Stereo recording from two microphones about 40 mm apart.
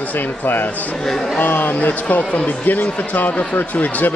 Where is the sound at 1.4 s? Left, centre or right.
Left.